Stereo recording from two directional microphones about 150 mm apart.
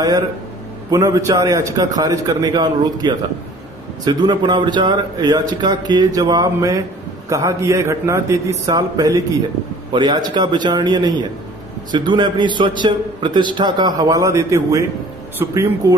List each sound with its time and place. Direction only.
0.8 s a man's voice: 20° right (ahead or behind)